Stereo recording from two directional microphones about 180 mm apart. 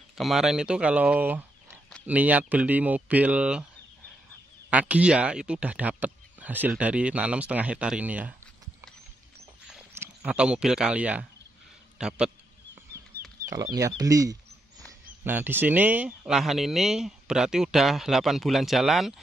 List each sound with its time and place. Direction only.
0.2 s speech: centre (ahead or behind)
4.6 s speech: 5° right (ahead or behind)
9.9 s speech: 5° right (ahead or behind)
13.5 s speech: 20° right (ahead or behind); by 19.1 s centre (ahead or behind)